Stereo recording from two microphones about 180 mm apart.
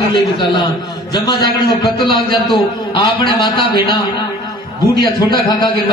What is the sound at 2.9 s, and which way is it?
Speech, 25° left (ahead or behind).